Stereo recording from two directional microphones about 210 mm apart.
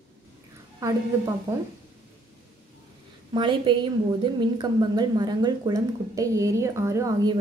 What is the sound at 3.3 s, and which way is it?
Speech, 25° right (ahead or behind).